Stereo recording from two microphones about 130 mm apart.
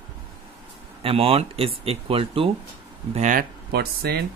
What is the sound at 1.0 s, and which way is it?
Speech, 45° right (ahead or behind).